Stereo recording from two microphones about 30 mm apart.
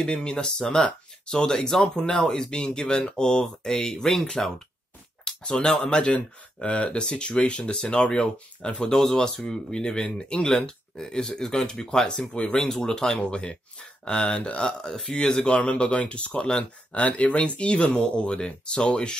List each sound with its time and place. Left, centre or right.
0.2 s speech: left
5.2 s a sound: left
5.8 s speech: left
6.1 s speech: left
10.5 s speech: centre; by 16.3 s left
16.3 s speech: left
16.9 s speech: left